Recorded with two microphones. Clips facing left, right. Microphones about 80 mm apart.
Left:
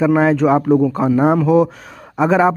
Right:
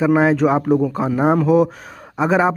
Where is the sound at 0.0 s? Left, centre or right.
Centre.